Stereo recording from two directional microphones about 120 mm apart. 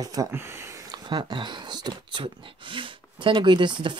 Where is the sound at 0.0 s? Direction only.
30° right (ahead or behind).